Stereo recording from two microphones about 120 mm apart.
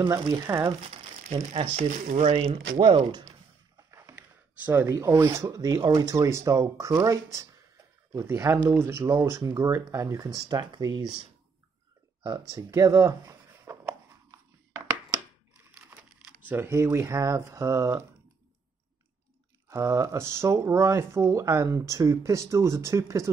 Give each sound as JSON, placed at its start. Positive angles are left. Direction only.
{"t": 0.1, "sound": "speech", "side_deg": -25}
{"t": 1.8, "sound": "speech", "side_deg": -90}
{"t": 2.3, "sound": "speech", "side_deg": -55}
{"t": 3.9, "sound": "a sound", "side_deg": -25}
{"t": 4.6, "sound": "speech", "side_deg": -20}
{"t": 12.2, "sound": "speech", "side_deg": -35}
{"t": 12.7, "sound": "a sound", "side_deg": -25}
{"t": 15.5, "sound": "crushing", "side_deg": -15}
{"t": 16.4, "sound": "speech", "side_deg": -20}
{"t": 19.7, "sound": "speech", "side_deg": -25}